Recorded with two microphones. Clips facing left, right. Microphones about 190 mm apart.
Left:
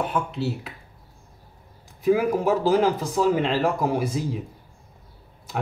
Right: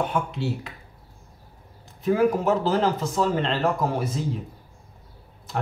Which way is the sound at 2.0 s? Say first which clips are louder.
Left 1 dB; 10° left (ahead or behind).